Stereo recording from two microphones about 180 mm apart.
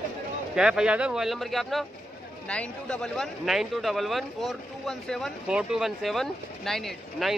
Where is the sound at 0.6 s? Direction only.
5° right (ahead or behind).